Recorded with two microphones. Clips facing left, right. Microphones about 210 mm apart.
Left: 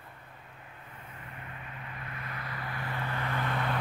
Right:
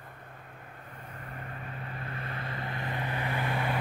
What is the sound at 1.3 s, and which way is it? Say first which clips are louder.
Vehicle: right 5 dB; 45° right (ahead or behind).